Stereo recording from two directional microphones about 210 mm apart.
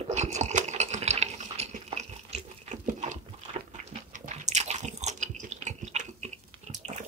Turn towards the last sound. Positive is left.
turn(degrees=-35)  # may be behind; listen again after turning